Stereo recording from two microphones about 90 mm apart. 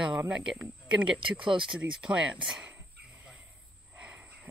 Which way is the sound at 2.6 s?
15° right (ahead or behind).